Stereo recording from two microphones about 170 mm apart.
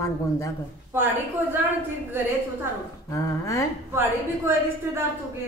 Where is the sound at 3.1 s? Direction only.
20° left (ahead or behind).